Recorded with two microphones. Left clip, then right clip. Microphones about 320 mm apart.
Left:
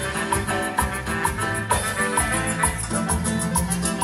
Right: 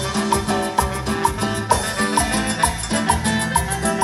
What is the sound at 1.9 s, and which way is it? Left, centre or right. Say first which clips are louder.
Salsa music: right 3 dB; right.